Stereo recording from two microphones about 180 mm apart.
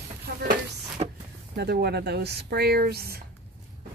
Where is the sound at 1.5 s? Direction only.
65° right (ahead or behind).